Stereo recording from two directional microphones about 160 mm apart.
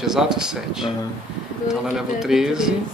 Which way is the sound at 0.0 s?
5° right (ahead or behind).